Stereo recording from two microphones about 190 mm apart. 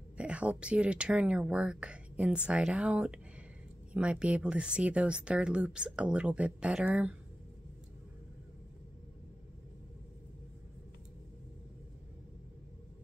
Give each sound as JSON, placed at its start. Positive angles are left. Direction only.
{"t": 0.2, "sound": "speech", "side_deg": -5}